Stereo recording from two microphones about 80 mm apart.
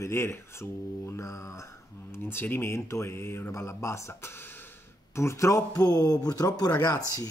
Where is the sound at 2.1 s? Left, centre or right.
Left.